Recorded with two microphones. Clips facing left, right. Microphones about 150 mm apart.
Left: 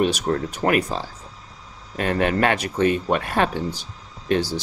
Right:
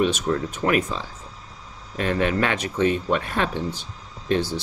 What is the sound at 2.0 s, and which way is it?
Speech, 50° left (ahead or behind).